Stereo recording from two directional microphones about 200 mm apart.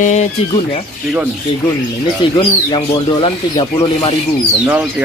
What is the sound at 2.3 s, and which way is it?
Speech, 20° left (ahead or behind).